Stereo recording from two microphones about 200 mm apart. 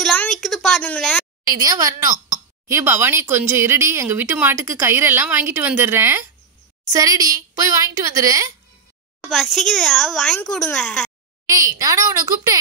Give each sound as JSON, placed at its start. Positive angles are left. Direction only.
{"t": 0.0, "sound": "a sound", "side_deg": 5}
{"t": 1.5, "sound": "speech", "side_deg": -15}
{"t": 9.2, "sound": "speech", "side_deg": 0}
{"t": 11.5, "sound": "speech", "side_deg": -15}